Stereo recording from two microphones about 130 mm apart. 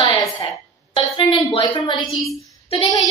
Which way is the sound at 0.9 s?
40° left (ahead or behind).